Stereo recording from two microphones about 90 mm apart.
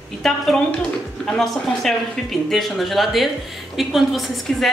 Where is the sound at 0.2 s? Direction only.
Centre (ahead or behind).